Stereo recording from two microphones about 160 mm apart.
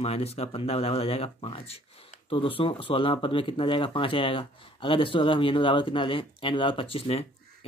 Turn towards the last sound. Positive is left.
turn(degrees=35)  # may be behind; listen again after turning